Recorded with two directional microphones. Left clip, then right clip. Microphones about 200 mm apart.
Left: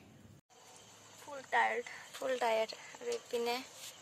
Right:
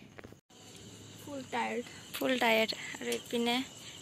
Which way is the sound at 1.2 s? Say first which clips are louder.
Left 3 dB; 10° left (ahead or behind).